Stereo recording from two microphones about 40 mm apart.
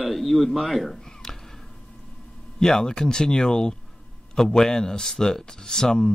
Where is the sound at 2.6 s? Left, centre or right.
Centre.